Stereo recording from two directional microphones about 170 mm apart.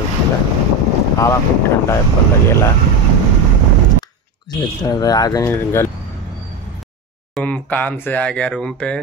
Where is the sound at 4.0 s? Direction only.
25° left (ahead or behind).